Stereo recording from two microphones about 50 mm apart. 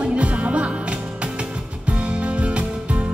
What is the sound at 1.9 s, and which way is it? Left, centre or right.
Music, right.